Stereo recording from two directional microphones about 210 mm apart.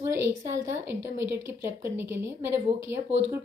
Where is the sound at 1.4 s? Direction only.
10° right (ahead or behind).